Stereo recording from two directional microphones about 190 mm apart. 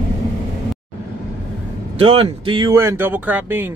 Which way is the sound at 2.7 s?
10° right (ahead or behind).